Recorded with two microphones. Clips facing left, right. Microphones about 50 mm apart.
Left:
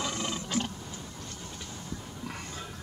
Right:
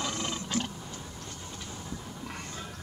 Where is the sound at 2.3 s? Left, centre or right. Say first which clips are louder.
Left 1 dB; centre.